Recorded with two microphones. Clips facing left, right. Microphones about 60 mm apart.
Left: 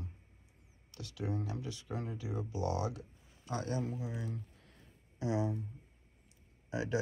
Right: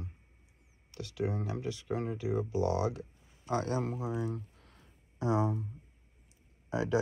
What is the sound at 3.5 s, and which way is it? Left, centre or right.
Speech, right.